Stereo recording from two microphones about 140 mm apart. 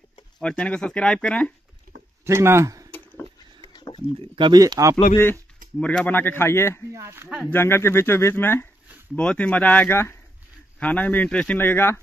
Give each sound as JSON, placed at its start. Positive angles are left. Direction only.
{"t": 0.4, "sound": "speech", "side_deg": 5}
{"t": 2.2, "sound": "speech", "side_deg": -20}
{"t": 3.7, "sound": "a sound", "side_deg": 30}
{"t": 4.2, "sound": "speech", "side_deg": -40}
{"t": 4.6, "sound": "speech", "side_deg": -25}
{"t": 5.1, "sound": "speech", "side_deg": 15}
{"t": 6.9, "sound": "speech", "side_deg": -20}
{"t": 7.4, "sound": "speech", "side_deg": 15}